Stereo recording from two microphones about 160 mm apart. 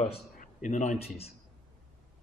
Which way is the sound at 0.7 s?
45° left (ahead or behind).